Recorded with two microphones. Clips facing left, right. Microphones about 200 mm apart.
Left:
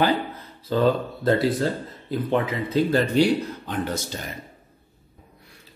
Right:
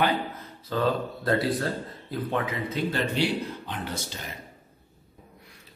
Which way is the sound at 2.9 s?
45° left (ahead or behind).